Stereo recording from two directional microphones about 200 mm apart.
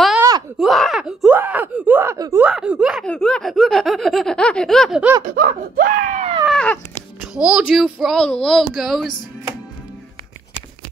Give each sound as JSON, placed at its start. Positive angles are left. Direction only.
{"t": 0.6, "sound": "speech", "side_deg": 0}
{"t": 5.2, "sound": "speech", "side_deg": -45}
{"t": 6.4, "sound": "speech", "side_deg": 5}